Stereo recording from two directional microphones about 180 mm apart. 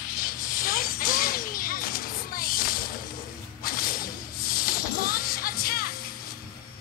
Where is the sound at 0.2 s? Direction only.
50° left (ahead or behind).